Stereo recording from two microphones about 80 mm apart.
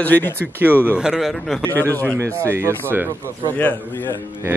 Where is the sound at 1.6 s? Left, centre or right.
Left.